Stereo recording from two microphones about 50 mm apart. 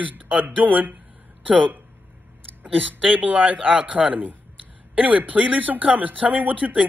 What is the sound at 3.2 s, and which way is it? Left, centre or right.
A man's voice, right.